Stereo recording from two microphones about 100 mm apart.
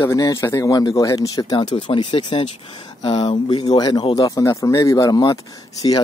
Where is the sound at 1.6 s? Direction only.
55° left (ahead or behind).